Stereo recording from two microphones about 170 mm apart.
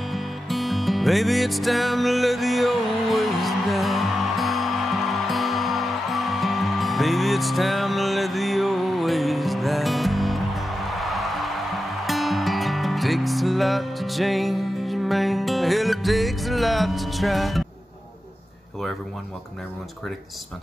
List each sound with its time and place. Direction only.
0.1 s music: centre (ahead or behind)